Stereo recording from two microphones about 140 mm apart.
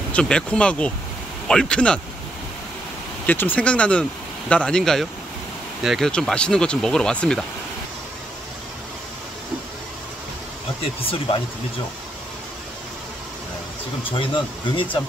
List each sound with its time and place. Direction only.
0.1 s speech: 5° left (ahead or behind)
3.3 s speech: 10° left (ahead or behind)
10.8 s speech: 40° left (ahead or behind)
14.1 s speech: 35° left (ahead or behind)